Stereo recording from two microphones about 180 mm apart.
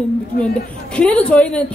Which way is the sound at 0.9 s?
5° left (ahead or behind).